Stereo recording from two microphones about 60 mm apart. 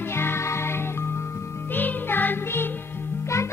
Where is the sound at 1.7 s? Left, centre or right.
Left.